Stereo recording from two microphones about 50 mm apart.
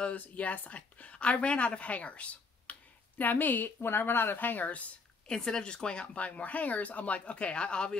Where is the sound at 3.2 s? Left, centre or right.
Left.